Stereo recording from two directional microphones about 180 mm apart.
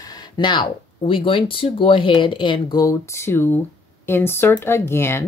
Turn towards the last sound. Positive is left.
turn(degrees=15)  # may be behind; listen again after turning